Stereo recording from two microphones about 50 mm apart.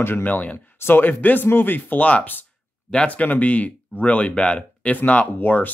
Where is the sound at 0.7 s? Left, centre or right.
Left.